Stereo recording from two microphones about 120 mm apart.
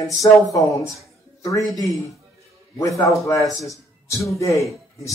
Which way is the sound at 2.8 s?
25° left (ahead or behind).